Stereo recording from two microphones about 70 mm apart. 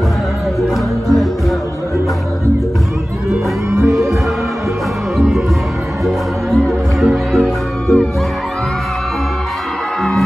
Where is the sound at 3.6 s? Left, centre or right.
Right.